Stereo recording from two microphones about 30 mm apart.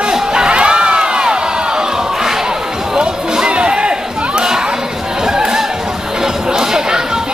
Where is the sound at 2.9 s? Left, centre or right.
Right.